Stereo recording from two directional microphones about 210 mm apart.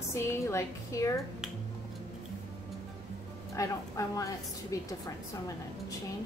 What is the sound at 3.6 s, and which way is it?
A woman's voice, 15° left (ahead or behind).